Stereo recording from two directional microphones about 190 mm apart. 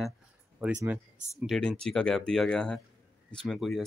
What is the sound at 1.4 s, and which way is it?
Speech, 5° left (ahead or behind).